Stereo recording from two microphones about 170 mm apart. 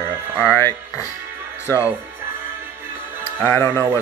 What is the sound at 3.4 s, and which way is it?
Speech, 15° left (ahead or behind).